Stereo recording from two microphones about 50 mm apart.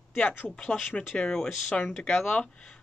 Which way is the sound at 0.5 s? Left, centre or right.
Centre.